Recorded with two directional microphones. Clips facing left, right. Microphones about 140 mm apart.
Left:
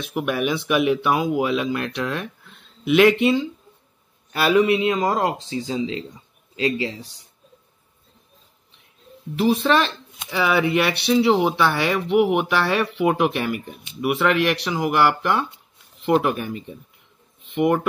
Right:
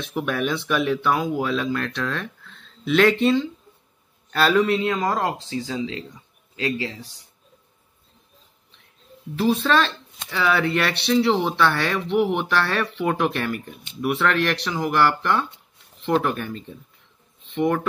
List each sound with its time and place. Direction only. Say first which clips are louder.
0.0 s speech: left 2 dB; 10° left (ahead or behind)
9.4 s speech: left 1 dB; 10° left (ahead or behind)